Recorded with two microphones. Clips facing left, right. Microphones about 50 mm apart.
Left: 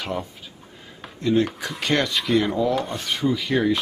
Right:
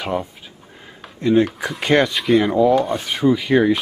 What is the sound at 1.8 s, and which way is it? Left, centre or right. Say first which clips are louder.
Rub: right 6 dB; centre.